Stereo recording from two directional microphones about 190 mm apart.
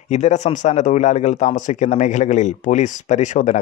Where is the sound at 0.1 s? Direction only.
35° left (ahead or behind).